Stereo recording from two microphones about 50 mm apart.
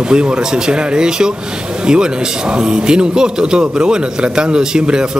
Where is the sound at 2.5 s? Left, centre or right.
Centre.